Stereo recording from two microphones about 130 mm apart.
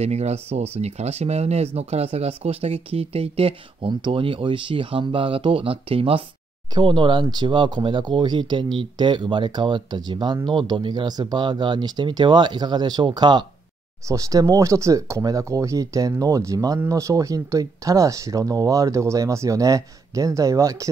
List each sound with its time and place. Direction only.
0.0 s speech: 55° right (ahead or behind); by 13.5 s 35° right (ahead or behind)
14.0 s speech: 25° right (ahead or behind)